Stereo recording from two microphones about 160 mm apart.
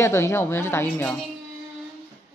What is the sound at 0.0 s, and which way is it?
A woman's voice, 15° left (ahead or behind).